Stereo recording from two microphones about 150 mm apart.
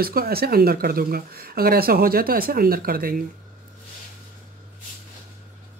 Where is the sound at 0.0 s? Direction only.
90° right; by 3.3 s 75° right (ahead or behind).